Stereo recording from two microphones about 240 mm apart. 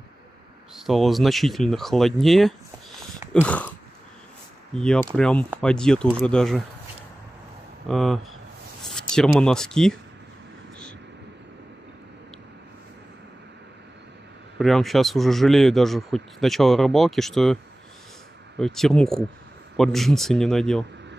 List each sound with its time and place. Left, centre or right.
0.7 s speech: centre
4.7 s speech: centre
7.9 s speech: centre
14.6 s speech: centre
18.6 s speech: centre